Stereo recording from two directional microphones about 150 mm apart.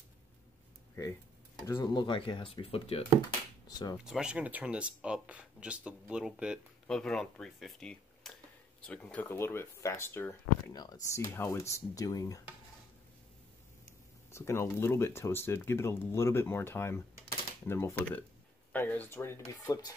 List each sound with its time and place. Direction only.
1.0 s speech: 20° left (ahead or behind)
2.0 s speech: 35° left (ahead or behind)
3.6 s speech: 25° left (ahead or behind)
4.0 s speech: 5° right (ahead or behind); by 10.3 s 15° left (ahead or behind)
10.7 s speech: 25° left (ahead or behind)
14.3 s speech: 15° left (ahead or behind)